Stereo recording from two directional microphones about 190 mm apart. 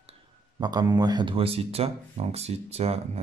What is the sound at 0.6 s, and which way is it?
Speech, 20° right (ahead or behind).